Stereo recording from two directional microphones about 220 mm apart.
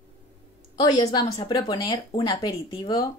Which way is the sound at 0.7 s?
20° left (ahead or behind).